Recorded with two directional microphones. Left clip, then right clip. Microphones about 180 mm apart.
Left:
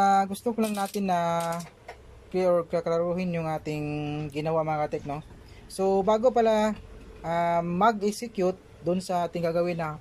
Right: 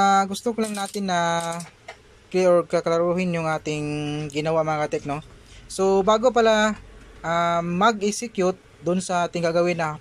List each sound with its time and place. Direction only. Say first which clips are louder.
0.0 s speech: right 3 dB; centre (ahead or behind)